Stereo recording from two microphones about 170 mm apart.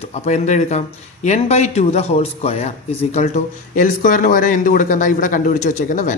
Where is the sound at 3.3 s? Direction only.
50° left (ahead or behind).